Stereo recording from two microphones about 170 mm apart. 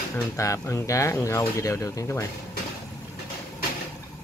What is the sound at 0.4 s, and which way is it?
Speech, 20° left (ahead or behind).